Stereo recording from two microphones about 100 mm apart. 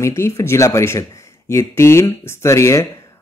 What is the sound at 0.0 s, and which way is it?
Speech, 30° left (ahead or behind).